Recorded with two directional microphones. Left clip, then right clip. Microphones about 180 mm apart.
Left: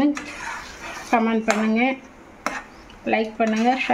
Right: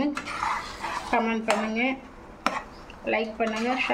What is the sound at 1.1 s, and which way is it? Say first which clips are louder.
Speech: left 5 dB; 55° left (ahead or behind).